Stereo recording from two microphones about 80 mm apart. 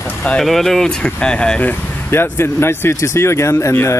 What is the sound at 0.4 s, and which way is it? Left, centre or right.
Speech, centre.